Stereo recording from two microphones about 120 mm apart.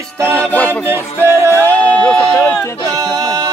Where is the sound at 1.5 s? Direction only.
15° left (ahead or behind).